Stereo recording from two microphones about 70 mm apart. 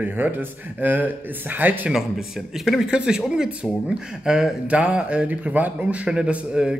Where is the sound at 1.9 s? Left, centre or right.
Centre.